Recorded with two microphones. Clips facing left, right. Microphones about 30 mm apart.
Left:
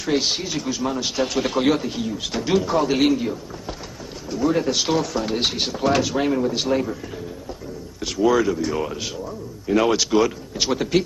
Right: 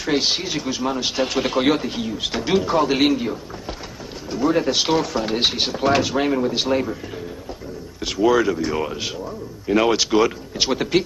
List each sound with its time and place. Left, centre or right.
0.0 s a man's voice: centre
8.0 s a man's voice: centre